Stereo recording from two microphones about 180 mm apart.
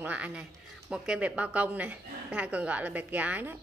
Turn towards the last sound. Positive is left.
turn(degrees=-10)  # may be behind; listen again after turning